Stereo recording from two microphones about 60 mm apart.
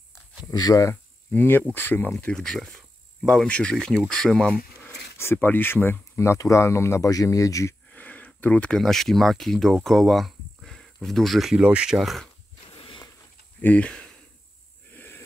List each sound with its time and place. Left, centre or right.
0.5 s speech: left
1.3 s speech: left
2.3 s speech: centre
3.7 s speech: centre
5.1 s speech: left
6.1 s speech: left
7.2 s speech: left
7.9 s a sound: left
8.7 s speech: centre
11.6 s speech: centre
11.9 s speech: centre
13.6 s speech: left
15.0 s a sound: left